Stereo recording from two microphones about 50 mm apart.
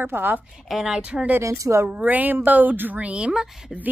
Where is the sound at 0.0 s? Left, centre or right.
Right.